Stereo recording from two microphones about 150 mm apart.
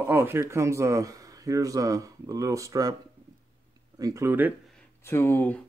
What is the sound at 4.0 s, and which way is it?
Speech, 20° right (ahead or behind).